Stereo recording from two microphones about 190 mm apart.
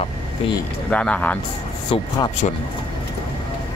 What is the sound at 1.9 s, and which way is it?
Speech, 30° left (ahead or behind).